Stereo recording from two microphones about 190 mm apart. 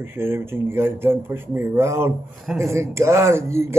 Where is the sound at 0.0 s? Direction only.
10° right (ahead or behind).